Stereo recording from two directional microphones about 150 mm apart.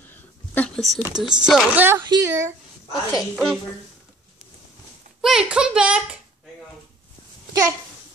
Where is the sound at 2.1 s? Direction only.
20° right (ahead or behind).